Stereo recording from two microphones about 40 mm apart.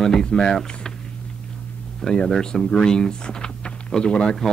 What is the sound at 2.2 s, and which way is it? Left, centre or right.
Speech, centre.